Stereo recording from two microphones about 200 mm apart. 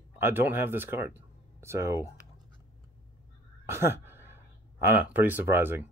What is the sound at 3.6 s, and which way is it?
Speech, 10° right (ahead or behind).